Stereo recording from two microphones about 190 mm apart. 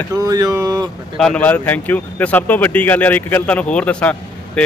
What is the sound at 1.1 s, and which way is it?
A man's voice, 5° left (ahead or behind).